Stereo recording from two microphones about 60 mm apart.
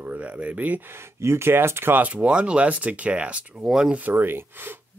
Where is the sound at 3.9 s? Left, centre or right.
Right.